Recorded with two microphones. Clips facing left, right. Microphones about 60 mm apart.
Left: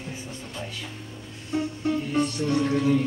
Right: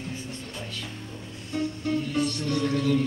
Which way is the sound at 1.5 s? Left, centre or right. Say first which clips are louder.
Left 2 dB; centre.